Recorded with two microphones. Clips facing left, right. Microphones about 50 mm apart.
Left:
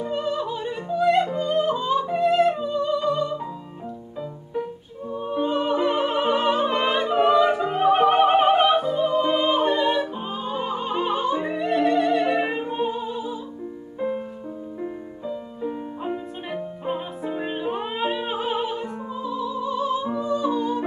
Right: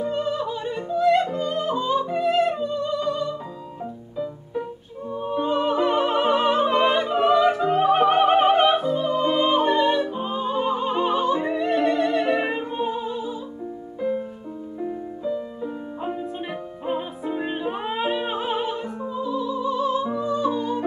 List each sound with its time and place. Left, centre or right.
0.0 s music: centre
5.1 s music: centre
13.9 s music: left
15.2 s music: centre
16.0 s music: centre